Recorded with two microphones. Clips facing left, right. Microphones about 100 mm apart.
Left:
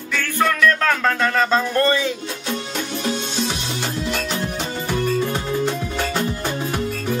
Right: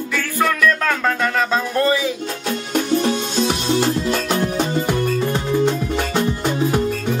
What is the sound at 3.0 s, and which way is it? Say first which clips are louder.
Music: right 5 dB; 40° right (ahead or behind).